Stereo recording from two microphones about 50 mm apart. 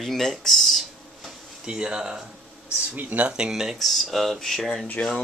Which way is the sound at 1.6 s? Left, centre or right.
Centre.